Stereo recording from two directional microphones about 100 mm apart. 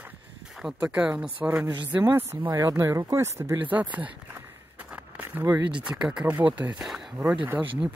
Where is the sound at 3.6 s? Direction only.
15° right (ahead or behind).